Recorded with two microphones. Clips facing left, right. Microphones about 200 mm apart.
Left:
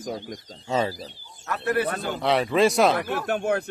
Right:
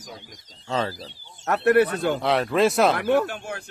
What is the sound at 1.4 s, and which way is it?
Speech, 70° right (ahead or behind).